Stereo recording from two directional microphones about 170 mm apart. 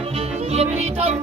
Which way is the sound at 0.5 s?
40° right (ahead or behind).